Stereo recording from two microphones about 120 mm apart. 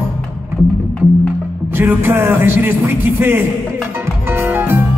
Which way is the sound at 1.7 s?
15° right (ahead or behind).